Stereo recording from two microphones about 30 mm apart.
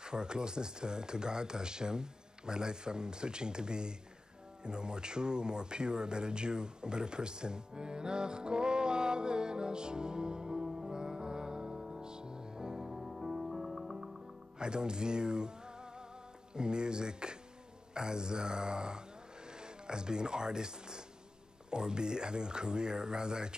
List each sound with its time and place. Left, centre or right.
0.0 s speech: right
10.9 s music: right
12.8 s music: centre
14.6 s speech: right